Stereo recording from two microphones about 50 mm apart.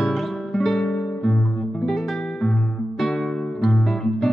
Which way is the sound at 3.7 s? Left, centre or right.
Centre.